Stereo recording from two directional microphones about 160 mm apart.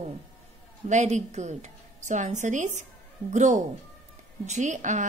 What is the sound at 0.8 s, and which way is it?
Speech, 50° right (ahead or behind).